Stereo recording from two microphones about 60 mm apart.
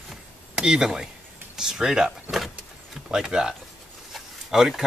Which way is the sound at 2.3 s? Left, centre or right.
Centre.